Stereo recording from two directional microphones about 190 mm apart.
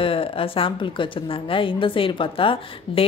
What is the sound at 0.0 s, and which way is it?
A woman's voice, 30° left (ahead or behind).